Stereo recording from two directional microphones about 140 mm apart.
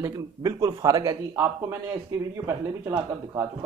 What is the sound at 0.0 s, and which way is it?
Speech, 25° right (ahead or behind).